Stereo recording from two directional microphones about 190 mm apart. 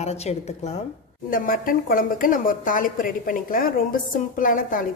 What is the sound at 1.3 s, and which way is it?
A woman's voice, 45° left (ahead or behind).